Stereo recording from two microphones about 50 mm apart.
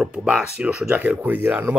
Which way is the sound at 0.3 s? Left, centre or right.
Right.